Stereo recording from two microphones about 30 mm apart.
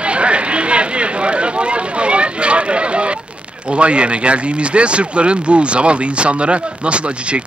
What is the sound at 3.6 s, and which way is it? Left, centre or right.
Speech, right.